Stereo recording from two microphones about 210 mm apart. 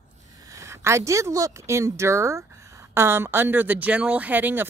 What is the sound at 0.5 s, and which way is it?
A woman's voice, 15° right (ahead or behind).